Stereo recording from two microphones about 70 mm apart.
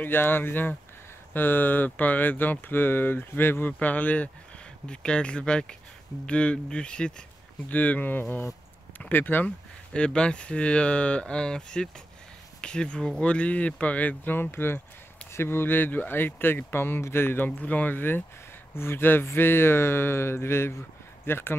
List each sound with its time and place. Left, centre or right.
0.0 s speech: left
9.9 s speech: centre; by 17.5 s left
17.5 s speech: left